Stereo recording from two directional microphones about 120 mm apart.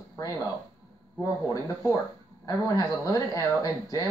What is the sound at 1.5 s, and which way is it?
Speech, 25° left (ahead or behind).